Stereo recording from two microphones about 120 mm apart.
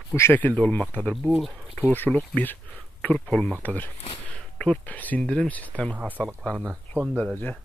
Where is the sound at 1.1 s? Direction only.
5° right (ahead or behind).